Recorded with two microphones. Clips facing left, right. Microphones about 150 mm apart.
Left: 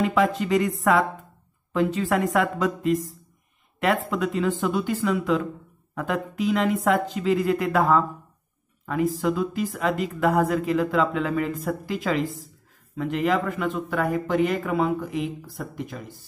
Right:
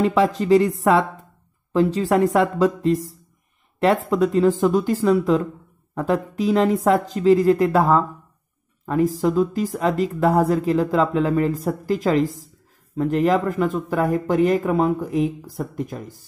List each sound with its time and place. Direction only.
0.0 s speech: 35° right (ahead or behind)